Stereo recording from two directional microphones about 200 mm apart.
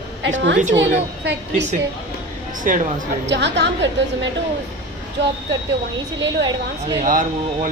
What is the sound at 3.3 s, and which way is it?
A woman's voice, 60° right (ahead or behind).